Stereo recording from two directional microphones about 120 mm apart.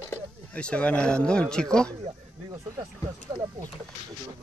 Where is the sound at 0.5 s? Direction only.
10° left (ahead or behind).